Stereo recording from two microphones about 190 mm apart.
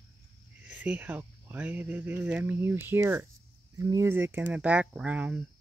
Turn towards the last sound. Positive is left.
turn(degrees=-5)  # may be behind; listen again after turning